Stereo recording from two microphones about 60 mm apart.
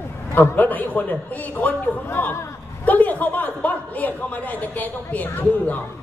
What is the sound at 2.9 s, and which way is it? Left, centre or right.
A man's voice, left.